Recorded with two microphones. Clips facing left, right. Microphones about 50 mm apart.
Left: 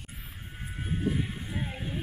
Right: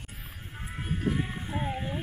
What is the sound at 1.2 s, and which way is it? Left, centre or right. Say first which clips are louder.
Music: right 2 dB; centre.